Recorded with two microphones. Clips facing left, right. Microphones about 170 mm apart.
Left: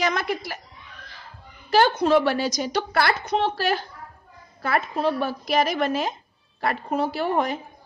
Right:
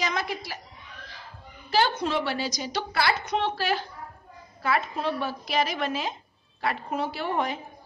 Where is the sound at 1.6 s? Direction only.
50° left (ahead or behind).